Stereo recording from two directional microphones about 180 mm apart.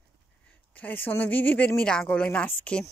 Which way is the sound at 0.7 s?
10° left (ahead or behind).